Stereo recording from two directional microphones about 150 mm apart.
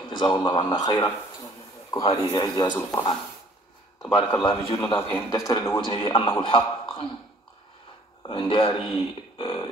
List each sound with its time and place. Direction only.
0.0 s a sound: 30° left (ahead or behind)
0.3 s a man's voice: 30° left (ahead or behind)
4.0 s a man's voice: 25° left (ahead or behind)
8.2 s speech: 30° left (ahead or behind)